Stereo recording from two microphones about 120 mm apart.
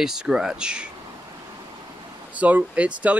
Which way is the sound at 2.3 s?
10° right (ahead or behind).